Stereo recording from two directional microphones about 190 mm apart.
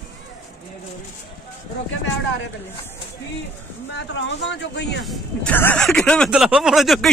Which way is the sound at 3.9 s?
65° left (ahead or behind).